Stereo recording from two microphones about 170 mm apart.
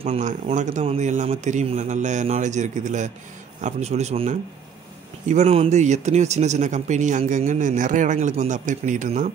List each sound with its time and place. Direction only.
0.0 s a man's voice: 45° right (ahead or behind)